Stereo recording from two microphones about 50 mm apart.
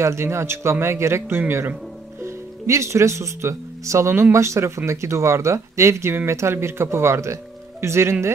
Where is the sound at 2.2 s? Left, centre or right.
Right.